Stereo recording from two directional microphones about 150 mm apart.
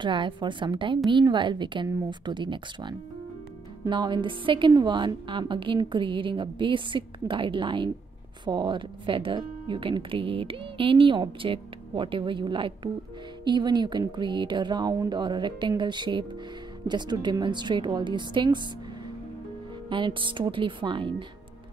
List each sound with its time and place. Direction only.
0.0 s speech: 30° right (ahead or behind)
19.9 s speech: 35° right (ahead or behind)